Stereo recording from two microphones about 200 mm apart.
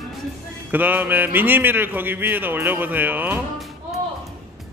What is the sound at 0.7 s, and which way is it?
Speech, 10° right (ahead or behind).